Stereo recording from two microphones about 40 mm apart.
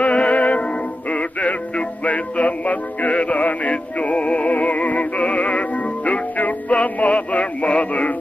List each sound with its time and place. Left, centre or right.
0.0 s music: left